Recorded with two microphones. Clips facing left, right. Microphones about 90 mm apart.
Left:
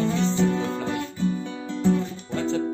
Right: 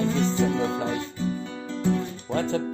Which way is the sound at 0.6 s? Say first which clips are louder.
Right 2 dB; 35° right (ahead or behind).